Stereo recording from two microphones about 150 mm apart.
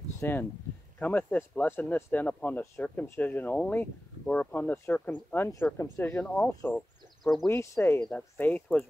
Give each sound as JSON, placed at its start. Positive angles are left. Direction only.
{"t": 0.2, "sound": "speech", "side_deg": 15}